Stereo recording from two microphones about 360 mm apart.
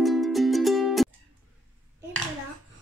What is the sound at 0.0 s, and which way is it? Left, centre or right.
Music, centre.